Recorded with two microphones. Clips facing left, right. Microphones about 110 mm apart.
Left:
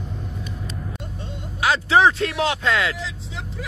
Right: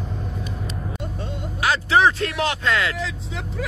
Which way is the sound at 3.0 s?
50° right (ahead or behind).